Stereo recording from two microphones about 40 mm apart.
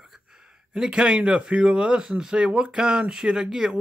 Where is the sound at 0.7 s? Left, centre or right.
Centre.